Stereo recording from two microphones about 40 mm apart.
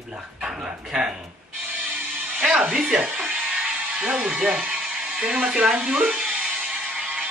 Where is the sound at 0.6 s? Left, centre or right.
Centre.